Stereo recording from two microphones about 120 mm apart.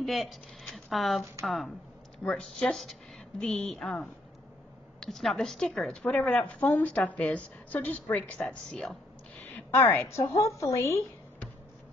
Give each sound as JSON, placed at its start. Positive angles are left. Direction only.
{"t": 0.0, "sound": "a woman's voice", "side_deg": 0}